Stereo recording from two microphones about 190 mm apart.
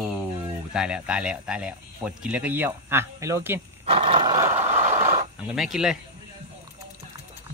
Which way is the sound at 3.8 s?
30° right (ahead or behind).